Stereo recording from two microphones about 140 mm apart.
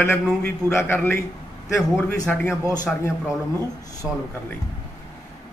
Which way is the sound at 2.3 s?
10° left (ahead or behind).